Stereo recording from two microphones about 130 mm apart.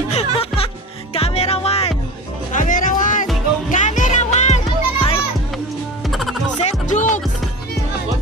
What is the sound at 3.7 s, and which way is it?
Music, 75° left (ahead or behind).